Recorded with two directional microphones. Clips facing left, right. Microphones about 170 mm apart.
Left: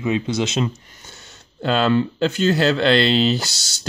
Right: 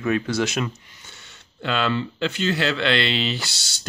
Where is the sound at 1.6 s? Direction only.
40° left (ahead or behind).